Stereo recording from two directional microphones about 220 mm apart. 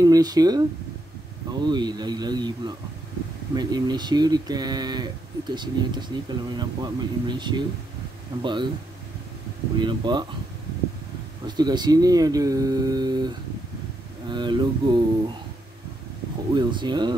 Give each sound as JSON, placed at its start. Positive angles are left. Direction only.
{"t": 0.0, "sound": "speech", "side_deg": -15}
{"t": 9.8, "sound": "speech", "side_deg": -20}
{"t": 11.4, "sound": "speech", "side_deg": -20}
{"t": 16.5, "sound": "speech", "side_deg": -20}